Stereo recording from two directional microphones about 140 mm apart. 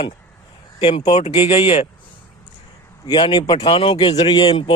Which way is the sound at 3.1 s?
35° left (ahead or behind).